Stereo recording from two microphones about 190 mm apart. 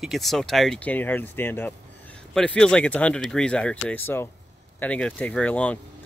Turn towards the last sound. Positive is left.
turn(degrees=5)  # may be behind; listen again after turning